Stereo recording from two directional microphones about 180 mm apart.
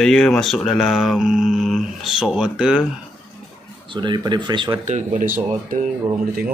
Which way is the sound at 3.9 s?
25° right (ahead or behind).